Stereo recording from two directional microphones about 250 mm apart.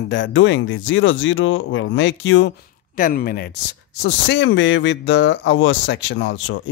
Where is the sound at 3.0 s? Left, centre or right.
Left.